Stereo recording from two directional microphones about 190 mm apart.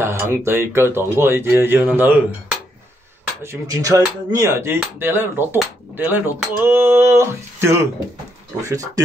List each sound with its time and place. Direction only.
0.0 s speech: 10° right (ahead or behind)
3.4 s speech: 20° right (ahead or behind)